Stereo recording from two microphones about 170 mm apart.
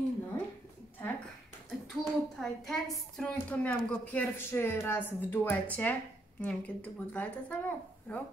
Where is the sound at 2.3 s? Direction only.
Centre (ahead or behind).